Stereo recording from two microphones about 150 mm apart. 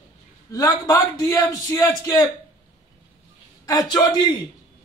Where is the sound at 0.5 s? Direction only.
20° left (ahead or behind).